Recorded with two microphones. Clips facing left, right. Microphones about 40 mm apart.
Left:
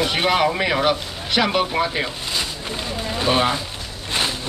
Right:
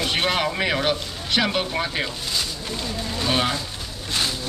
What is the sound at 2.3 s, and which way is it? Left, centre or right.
Speech, left.